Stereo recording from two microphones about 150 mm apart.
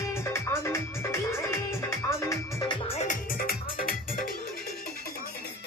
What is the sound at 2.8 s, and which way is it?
Music, 50° left (ahead or behind).